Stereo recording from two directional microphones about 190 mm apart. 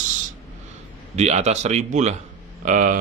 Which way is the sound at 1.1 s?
35° right (ahead or behind).